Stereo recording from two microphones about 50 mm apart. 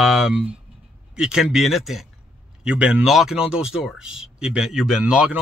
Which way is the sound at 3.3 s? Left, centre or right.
Centre.